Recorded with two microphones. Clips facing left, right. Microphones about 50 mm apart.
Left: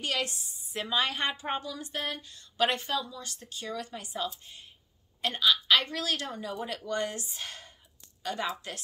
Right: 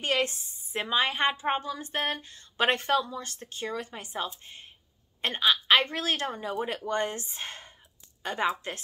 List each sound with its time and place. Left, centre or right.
0.0 s a woman's voice: right
0.8 s a woman's voice: right